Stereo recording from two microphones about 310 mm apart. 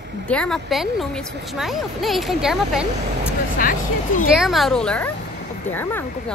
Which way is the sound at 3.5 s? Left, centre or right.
Left.